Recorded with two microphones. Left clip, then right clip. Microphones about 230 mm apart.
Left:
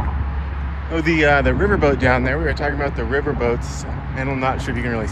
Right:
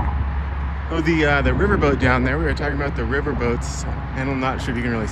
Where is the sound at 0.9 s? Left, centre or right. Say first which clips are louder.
Left 3 dB; centre.